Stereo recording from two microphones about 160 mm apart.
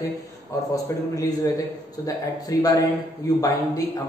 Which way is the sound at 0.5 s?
20° left (ahead or behind).